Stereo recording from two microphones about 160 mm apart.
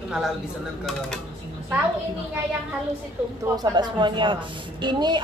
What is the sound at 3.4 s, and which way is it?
A woman's voice, 25° right (ahead or behind).